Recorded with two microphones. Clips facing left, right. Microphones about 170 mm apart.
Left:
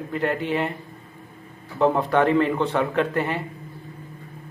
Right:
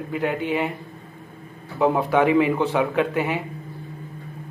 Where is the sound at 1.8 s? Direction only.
5° right (ahead or behind).